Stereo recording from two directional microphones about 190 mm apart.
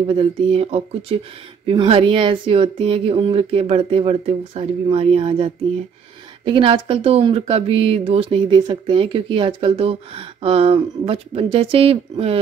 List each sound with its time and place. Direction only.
0.0 s speech: 30° right (ahead or behind)